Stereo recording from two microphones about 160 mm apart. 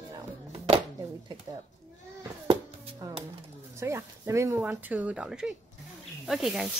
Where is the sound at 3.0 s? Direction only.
25° right (ahead or behind).